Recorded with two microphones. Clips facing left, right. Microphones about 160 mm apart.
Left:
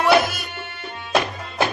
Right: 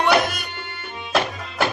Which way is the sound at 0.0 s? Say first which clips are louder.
Left 2 dB; centre (ahead or behind).